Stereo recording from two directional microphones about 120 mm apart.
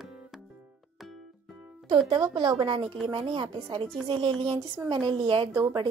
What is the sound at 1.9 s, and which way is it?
A woman's voice, 40° right (ahead or behind).